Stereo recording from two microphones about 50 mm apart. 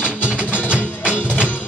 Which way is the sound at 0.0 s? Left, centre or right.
Right.